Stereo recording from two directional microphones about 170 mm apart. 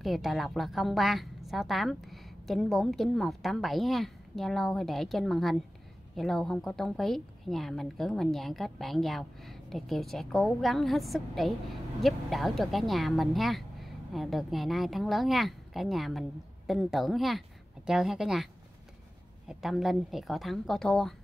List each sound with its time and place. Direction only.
0.0 s a woman's voice: centre (ahead or behind)